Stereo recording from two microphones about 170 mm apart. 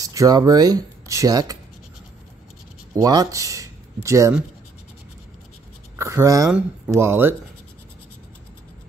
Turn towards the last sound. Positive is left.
turn(degrees=-15)  # may be behind; listen again after turning